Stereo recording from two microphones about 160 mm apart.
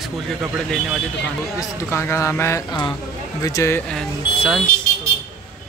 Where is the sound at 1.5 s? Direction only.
15° left (ahead or behind).